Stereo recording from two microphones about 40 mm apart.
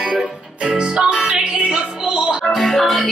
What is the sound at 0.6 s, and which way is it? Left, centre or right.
Music, right.